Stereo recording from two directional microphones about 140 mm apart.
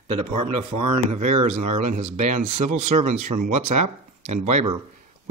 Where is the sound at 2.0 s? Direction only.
55° right (ahead or behind).